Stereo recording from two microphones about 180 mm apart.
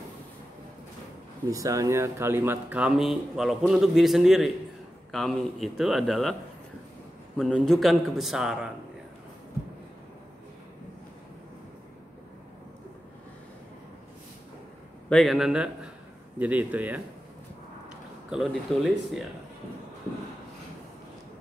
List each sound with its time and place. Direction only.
1.5 s a man's voice: 20° right (ahead or behind); by 6.3 s centre (ahead or behind)
7.3 s a man's voice: 5° left (ahead or behind)
15.0 s a man's voice: centre (ahead or behind)
18.3 s a man's voice: centre (ahead or behind)